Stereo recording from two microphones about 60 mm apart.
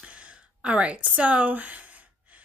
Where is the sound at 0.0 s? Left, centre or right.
Centre.